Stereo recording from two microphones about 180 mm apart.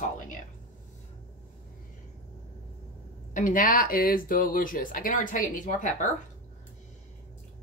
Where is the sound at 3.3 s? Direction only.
45° left (ahead or behind).